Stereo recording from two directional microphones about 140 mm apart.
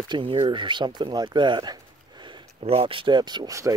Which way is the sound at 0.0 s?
35° right (ahead or behind).